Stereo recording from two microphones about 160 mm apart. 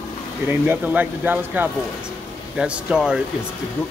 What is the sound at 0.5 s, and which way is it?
Speech, 10° right (ahead or behind).